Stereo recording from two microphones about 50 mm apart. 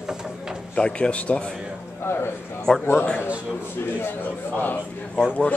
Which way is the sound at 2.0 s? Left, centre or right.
Left.